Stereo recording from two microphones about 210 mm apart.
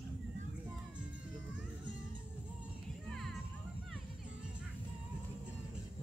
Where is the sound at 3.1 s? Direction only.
Centre (ahead or behind).